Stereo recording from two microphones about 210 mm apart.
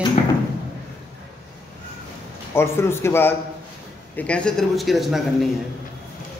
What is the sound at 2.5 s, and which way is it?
A man's voice, 10° left (ahead or behind).